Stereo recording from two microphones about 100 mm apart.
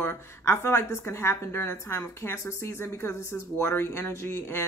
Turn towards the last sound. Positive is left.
turn(degrees=25)  # may be behind; listen again after turning